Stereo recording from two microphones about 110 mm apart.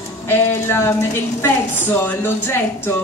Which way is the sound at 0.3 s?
20° left (ahead or behind).